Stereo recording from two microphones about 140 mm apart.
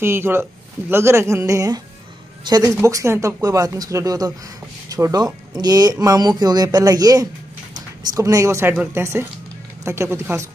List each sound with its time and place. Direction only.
0.0 s speech: 15° right (ahead or behind)